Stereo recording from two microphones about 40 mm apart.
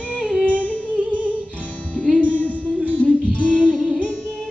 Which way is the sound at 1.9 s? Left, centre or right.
Left.